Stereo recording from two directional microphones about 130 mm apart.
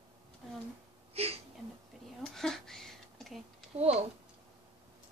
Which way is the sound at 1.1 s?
50° right (ahead or behind).